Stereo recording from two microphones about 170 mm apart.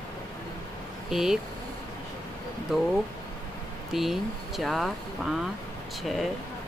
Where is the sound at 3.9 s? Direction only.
Centre (ahead or behind).